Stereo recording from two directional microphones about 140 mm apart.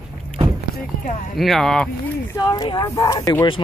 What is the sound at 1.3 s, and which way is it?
Speech, centre (ahead or behind).